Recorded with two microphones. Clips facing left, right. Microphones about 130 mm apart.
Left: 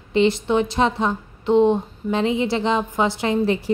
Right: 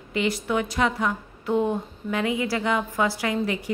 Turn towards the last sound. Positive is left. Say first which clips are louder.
# left 6 dB
turn(degrees=30)  # may be behind; listen again after turning